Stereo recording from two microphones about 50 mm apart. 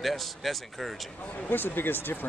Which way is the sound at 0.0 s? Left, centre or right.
Centre.